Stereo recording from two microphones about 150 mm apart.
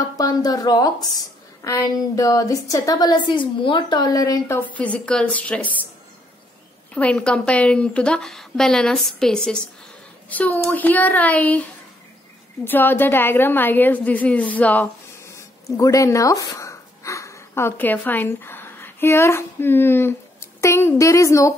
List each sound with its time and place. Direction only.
0.2 s a woman's voice: 25° left (ahead or behind)
4.6 s a woman's voice: 10° left (ahead or behind)
6.9 s a woman's voice: 10° left (ahead or behind)
12.6 s a woman's voice: 15° left (ahead or behind)